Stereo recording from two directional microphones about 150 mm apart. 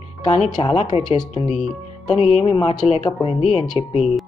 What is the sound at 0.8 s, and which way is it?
Speech, 30° left (ahead or behind).